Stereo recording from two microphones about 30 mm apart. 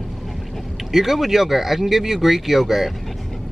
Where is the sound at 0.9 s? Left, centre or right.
Centre.